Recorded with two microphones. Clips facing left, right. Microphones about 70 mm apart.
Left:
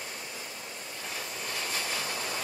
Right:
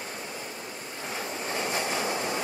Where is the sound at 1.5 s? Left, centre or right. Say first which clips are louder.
Right 6 dB; right.